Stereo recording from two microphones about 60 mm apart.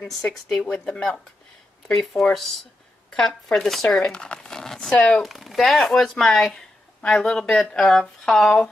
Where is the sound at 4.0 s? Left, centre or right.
Centre.